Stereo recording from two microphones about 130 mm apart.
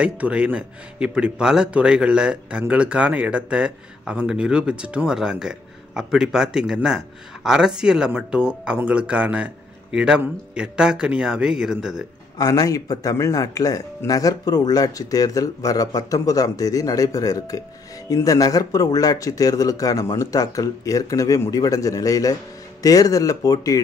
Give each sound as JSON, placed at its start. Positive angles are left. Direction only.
{"t": 0.0, "sound": "a man's voice", "side_deg": -10}
{"t": 12.4, "sound": "speech", "side_deg": 30}